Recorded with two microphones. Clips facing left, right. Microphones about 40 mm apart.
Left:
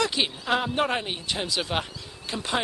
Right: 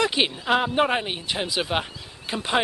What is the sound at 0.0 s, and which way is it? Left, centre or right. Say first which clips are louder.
Speech: right 3 dB; centre.